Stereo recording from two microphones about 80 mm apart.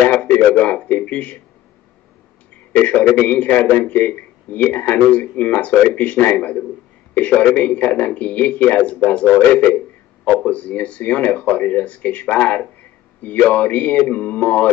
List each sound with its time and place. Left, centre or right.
0.0 s a man's voice: centre
2.8 s a man's voice: centre